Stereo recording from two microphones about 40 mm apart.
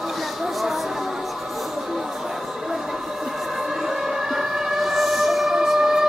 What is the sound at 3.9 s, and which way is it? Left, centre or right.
Music, centre.